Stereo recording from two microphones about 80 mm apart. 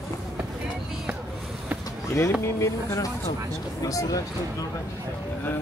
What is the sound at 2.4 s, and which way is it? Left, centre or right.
Speech, left.